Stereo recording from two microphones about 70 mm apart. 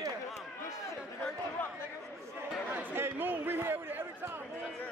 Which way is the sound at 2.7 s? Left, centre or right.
Right.